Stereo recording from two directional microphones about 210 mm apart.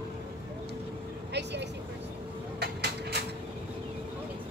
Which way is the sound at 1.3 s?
55° right (ahead or behind).